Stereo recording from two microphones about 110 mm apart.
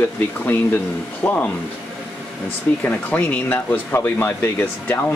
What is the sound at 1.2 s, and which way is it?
Speech, 15° left (ahead or behind).